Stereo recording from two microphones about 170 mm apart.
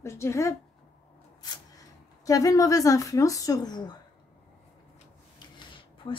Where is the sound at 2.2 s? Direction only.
20° left (ahead or behind).